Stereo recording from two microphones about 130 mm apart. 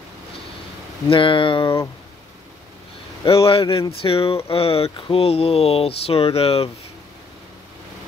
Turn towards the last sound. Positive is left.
turn(degrees=50)  # may be behind; listen again after turning